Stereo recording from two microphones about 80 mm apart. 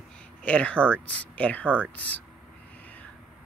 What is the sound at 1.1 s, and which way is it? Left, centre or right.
Speech, centre.